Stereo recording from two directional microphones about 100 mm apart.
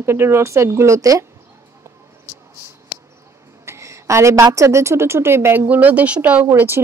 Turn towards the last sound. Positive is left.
turn(degrees=-20)  # may be behind; listen again after turning